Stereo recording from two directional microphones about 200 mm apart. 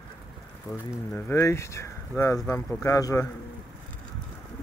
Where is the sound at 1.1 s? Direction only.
10° left (ahead or behind).